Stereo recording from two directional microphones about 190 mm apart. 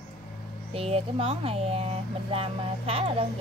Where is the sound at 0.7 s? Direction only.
30° right (ahead or behind).